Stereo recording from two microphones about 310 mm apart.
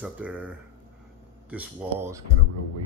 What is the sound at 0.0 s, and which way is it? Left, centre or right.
Speech, centre.